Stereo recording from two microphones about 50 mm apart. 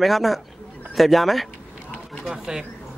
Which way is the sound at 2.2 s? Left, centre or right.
Centre.